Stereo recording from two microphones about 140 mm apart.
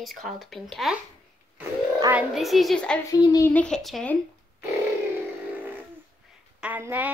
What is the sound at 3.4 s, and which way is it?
Speech, 10° left (ahead or behind).